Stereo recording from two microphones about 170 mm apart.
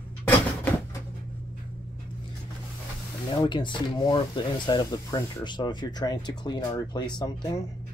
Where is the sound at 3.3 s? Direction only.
30° left (ahead or behind).